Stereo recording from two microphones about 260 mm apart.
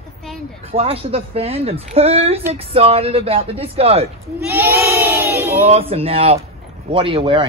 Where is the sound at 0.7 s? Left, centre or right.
Right.